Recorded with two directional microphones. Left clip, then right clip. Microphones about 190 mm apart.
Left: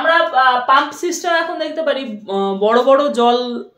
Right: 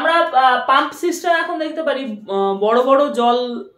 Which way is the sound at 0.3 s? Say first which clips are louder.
Left 1 dB; 10° left (ahead or behind).